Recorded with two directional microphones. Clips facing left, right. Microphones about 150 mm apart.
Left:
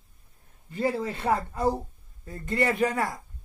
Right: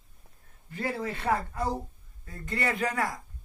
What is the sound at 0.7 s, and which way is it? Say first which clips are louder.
Speech: left 5 dB; 20° left (ahead or behind).